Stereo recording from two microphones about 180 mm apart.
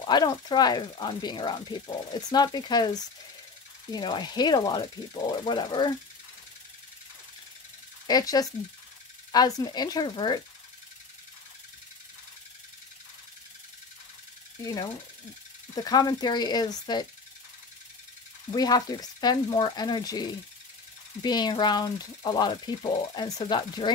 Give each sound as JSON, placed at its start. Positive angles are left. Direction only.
{"t": 0.0, "sound": "speech", "side_deg": 20}
{"t": 8.1, "sound": "speech", "side_deg": 20}
{"t": 15.7, "sound": "speech", "side_deg": 20}
{"t": 18.5, "sound": "speech", "side_deg": 20}